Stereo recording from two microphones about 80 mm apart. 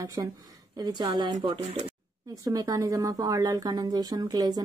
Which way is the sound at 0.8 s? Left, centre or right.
Right.